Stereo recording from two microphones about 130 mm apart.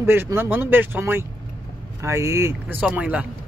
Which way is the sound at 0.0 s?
20° right (ahead or behind).